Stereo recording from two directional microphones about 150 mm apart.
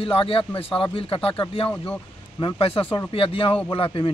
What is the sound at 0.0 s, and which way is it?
Speech, 40° left (ahead or behind).